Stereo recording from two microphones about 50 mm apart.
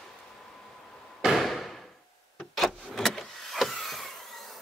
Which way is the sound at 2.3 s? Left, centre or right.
Centre.